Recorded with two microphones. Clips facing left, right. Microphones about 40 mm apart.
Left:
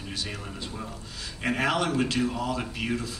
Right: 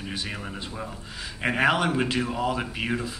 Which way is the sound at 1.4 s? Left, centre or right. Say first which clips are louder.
Right 3 dB; centre.